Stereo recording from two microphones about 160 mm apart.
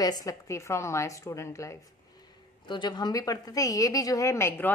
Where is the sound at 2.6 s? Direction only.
30° left (ahead or behind).